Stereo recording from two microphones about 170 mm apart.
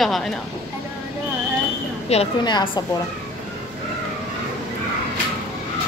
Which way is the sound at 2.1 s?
40° left (ahead or behind).